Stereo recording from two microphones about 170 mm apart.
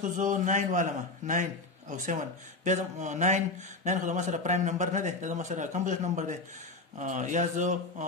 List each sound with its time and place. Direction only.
0.0 s a man's voice: 50° right (ahead or behind)